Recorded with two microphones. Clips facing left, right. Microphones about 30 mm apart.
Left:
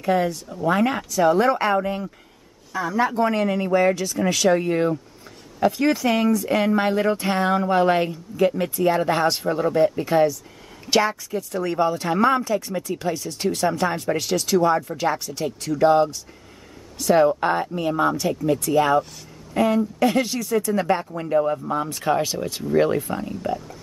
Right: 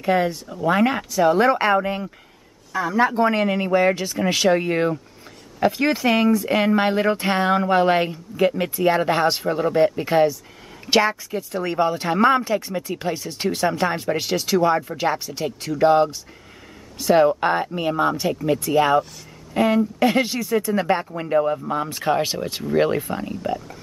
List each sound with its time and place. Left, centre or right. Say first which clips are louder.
0.0 s speech: right 1 dB; centre